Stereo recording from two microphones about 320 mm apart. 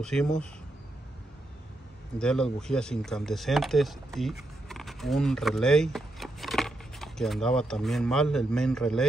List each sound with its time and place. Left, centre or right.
0.0 s speech: centre
2.1 s speech: centre